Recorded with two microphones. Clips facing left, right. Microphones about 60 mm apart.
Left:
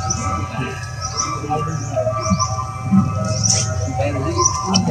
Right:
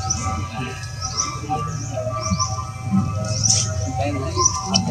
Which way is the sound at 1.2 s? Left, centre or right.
Left.